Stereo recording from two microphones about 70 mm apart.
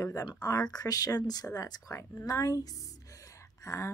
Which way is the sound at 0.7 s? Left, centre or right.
Left.